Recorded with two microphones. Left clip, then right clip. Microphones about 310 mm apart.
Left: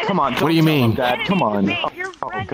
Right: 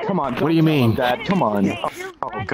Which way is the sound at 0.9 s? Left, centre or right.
Centre.